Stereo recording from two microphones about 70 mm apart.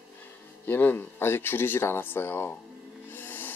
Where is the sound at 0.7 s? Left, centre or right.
Left.